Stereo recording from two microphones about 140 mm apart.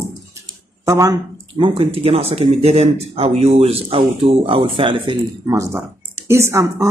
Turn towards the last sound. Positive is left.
turn(degrees=-20)  # may be behind; listen again after turning